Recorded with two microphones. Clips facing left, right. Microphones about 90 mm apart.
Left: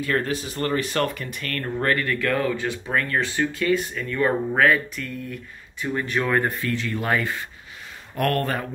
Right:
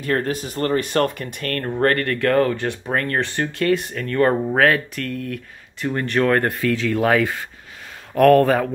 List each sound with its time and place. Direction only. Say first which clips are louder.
0.0 s speech: right 2 dB; 45° right (ahead or behind); by 5.9 s 90° right
5.9 s speech: right 4 dB; 60° right (ahead or behind); by 8.6 s 90° right